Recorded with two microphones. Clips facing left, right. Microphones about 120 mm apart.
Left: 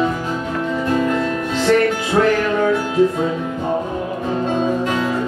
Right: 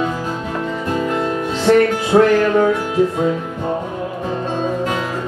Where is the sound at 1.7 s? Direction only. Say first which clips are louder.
Right 3 dB; 30° right (ahead or behind).